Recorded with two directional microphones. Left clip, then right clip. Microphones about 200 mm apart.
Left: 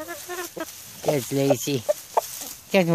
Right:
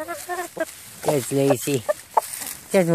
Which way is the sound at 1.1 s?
Centre (ahead or behind).